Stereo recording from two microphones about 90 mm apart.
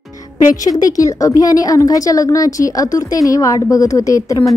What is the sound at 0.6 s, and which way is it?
A woman's voice, 40° left (ahead or behind).